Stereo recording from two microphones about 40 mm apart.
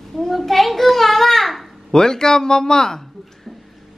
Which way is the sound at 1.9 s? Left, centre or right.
Centre.